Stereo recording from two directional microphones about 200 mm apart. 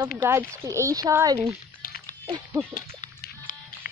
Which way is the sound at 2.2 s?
20° right (ahead or behind).